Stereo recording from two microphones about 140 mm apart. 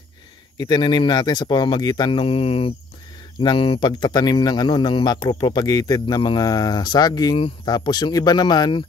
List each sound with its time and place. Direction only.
0.7 s speech: 30° left (ahead or behind)